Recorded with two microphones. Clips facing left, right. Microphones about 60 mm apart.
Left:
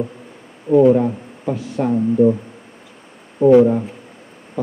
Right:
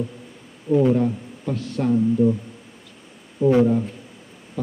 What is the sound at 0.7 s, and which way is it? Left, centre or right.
Speech, left.